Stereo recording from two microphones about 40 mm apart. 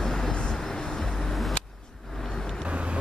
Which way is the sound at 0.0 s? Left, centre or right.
Centre.